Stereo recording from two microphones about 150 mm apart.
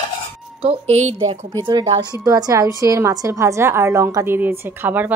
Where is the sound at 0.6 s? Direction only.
45° right (ahead or behind).